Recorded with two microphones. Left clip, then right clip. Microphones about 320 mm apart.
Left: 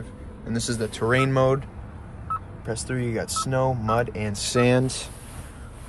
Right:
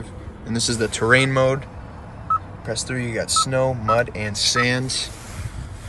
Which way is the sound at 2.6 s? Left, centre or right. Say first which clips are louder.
Right 3 dB; centre.